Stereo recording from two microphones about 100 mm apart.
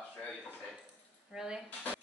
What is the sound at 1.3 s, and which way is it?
Speech, 5° right (ahead or behind).